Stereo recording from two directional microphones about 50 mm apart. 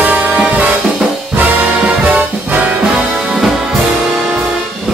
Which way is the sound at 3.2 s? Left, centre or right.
Centre.